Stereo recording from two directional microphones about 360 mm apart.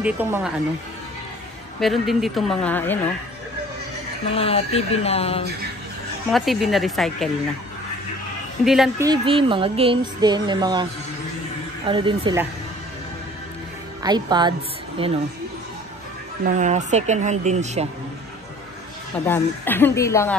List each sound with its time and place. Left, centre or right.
0.0 s a woman's voice: centre
1.8 s a woman's voice: centre
4.4 s speech: centre
6.3 s a woman's voice: centre
8.6 s speech: centre
14.0 s speech: centre
16.4 s speech: centre
19.2 s a woman's voice: centre